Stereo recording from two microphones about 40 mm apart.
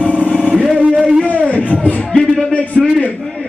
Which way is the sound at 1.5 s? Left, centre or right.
Left.